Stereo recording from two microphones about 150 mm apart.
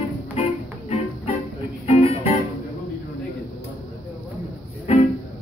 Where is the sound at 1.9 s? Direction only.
40° left (ahead or behind).